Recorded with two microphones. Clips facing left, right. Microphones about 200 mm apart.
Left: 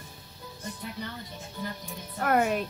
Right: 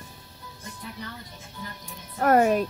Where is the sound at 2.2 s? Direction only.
40° right (ahead or behind).